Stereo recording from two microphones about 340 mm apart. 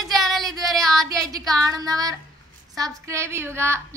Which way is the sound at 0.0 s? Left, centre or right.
Centre.